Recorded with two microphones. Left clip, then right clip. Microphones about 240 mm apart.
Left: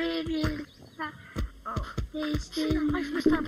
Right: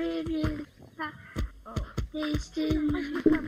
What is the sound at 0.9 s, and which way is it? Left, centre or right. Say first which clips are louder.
Heart sounds: even; centre.